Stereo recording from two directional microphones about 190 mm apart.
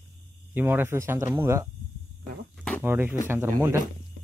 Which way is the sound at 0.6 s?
10° right (ahead or behind).